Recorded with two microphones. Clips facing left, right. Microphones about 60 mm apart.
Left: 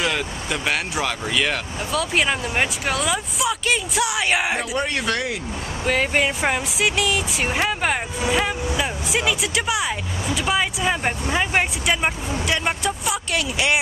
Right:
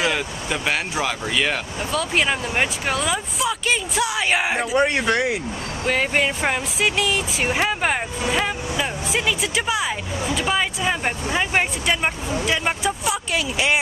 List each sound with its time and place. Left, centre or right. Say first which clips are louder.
0.0 s speech: right 1 dB; centre
4.6 s speech: right 4 dB; right
5.9 s speech: even; centre